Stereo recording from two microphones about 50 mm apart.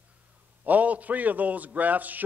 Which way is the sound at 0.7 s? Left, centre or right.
Right.